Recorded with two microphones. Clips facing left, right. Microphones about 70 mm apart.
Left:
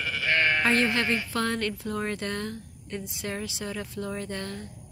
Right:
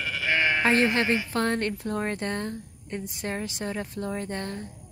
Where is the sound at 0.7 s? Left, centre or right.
Right.